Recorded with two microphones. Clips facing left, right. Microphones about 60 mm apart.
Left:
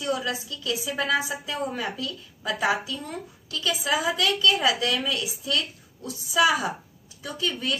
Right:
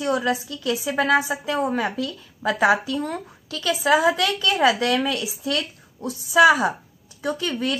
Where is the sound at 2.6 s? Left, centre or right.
Right.